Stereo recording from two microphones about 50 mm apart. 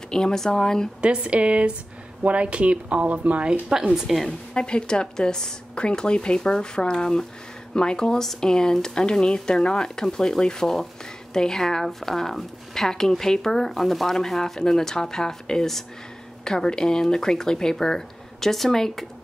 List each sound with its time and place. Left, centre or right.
0.1 s a woman's voice: centre
1.0 s speech: right
3.6 s speech: centre
4.1 s speech: centre
4.6 s a woman's voice: centre